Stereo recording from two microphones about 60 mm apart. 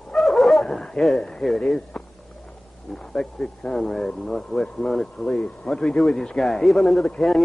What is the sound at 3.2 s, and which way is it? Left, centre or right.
A man's voice, centre.